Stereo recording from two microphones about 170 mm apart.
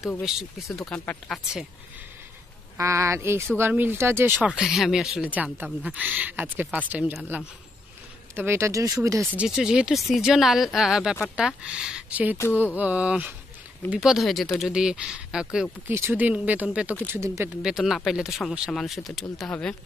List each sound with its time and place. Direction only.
0.0 s speech: 5° right (ahead or behind)
2.8 s speech: 15° right (ahead or behind)
4.6 s speech: centre (ahead or behind); by 9.3 s 20° right (ahead or behind)
9.4 s speech: 5° right (ahead or behind)
17.6 s speech: 5° right (ahead or behind)